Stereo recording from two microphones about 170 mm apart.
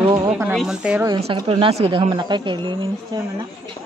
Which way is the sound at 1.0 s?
30° right (ahead or behind).